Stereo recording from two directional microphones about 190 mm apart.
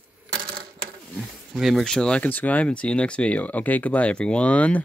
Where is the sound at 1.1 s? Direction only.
Centre (ahead or behind).